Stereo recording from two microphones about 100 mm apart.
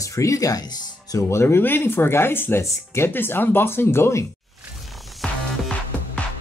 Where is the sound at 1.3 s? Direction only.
25° left (ahead or behind).